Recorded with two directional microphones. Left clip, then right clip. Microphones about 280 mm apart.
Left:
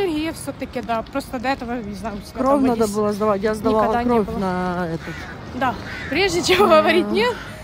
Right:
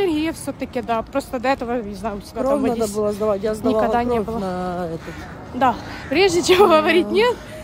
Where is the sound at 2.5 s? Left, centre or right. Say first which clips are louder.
Left 2 dB; left.